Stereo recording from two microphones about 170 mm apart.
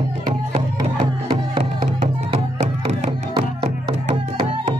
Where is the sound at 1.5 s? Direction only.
35° right (ahead or behind).